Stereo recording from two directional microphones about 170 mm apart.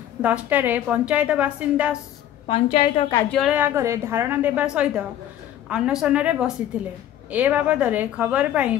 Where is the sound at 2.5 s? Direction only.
40° left (ahead or behind).